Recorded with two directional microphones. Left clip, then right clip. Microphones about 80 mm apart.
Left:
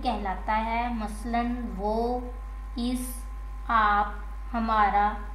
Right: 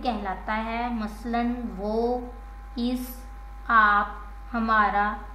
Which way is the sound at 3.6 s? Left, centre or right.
Right.